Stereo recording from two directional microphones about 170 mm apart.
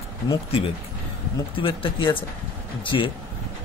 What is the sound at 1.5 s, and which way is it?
Speech, 30° left (ahead or behind).